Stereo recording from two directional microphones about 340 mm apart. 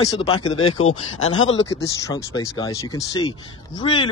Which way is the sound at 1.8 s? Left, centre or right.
Centre.